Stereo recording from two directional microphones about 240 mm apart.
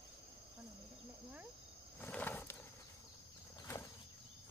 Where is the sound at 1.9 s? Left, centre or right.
Centre.